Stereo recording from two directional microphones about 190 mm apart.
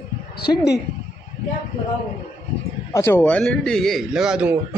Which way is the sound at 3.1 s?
10° left (ahead or behind).